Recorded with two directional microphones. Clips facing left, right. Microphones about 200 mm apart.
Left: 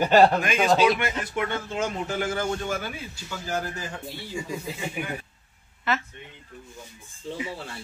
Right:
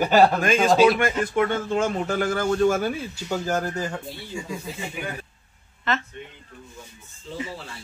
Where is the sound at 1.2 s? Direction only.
45° right (ahead or behind).